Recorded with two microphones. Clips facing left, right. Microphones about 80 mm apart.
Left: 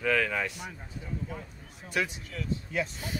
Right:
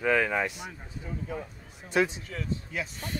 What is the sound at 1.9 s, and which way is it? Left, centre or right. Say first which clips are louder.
Speech: right 5 dB; right.